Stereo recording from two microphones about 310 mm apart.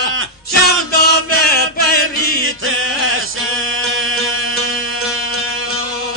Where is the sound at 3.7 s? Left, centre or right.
Right.